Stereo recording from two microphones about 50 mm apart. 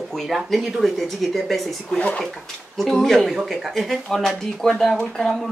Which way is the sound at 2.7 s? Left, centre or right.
Centre.